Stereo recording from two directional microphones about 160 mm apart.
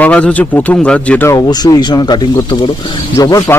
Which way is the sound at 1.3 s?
25° left (ahead or behind).